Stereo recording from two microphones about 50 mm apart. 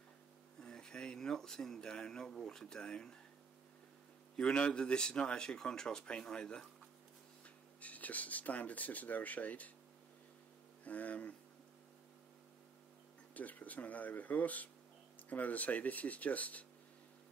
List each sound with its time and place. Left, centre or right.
0.6 s speech: centre
4.4 s speech: centre
7.4 s speech: left
10.8 s speech: left
13.3 s speech: left